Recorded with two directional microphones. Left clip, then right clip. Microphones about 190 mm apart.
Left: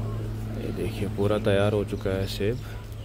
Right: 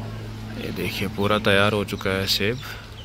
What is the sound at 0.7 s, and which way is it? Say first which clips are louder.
Speech: right 4 dB; 5° right (ahead or behind).